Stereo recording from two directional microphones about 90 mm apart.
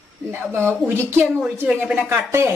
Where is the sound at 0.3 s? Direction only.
25° right (ahead or behind).